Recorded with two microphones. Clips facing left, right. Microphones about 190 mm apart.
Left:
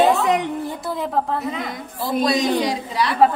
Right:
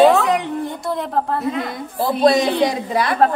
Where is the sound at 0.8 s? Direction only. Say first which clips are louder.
Right 1 dB; centre (ahead or behind).